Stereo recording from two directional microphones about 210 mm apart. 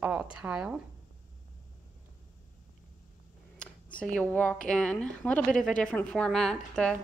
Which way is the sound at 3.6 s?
5° left (ahead or behind).